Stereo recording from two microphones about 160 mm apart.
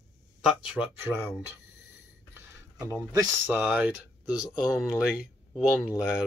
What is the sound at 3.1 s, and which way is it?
Speech, 20° right (ahead or behind).